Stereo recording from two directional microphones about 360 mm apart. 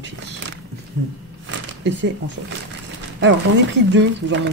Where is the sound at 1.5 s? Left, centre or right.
Right.